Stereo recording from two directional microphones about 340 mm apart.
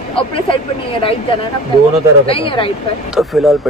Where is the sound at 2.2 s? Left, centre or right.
Centre.